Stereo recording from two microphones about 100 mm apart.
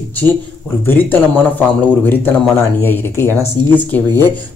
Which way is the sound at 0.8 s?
20° left (ahead or behind).